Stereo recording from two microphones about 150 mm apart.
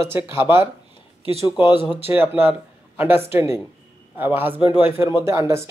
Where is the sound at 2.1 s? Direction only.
15° right (ahead or behind).